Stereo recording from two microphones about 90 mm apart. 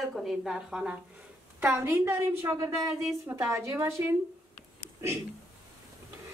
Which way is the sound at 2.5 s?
35° right (ahead or behind).